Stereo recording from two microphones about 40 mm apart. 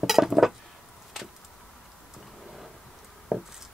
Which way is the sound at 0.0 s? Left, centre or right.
Centre.